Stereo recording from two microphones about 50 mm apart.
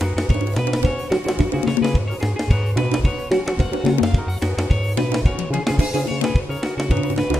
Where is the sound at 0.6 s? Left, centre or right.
Centre.